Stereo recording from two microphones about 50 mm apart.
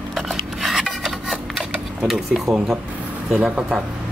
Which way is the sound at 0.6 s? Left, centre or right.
Centre.